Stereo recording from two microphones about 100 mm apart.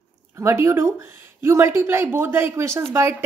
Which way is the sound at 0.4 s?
30° right (ahead or behind).